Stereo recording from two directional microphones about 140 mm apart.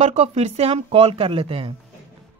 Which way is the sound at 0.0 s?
50° right (ahead or behind).